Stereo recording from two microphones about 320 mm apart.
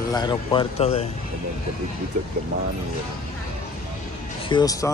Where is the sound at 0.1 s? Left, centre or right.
Centre.